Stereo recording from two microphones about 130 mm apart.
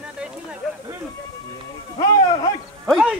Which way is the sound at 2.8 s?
5° right (ahead or behind).